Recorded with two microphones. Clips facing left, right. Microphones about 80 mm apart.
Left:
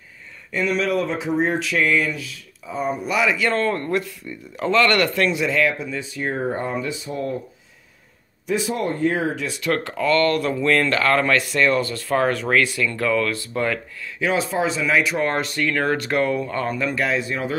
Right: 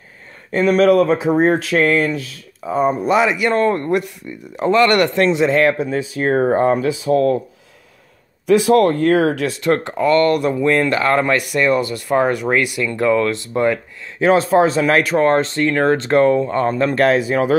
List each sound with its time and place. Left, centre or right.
0.5 s speech: right
3.3 s speech: right
5.6 s speech: right
8.5 s speech: right
9.5 s speech: right
14.2 s speech: right
15.1 s speech: right
17.3 s speech: right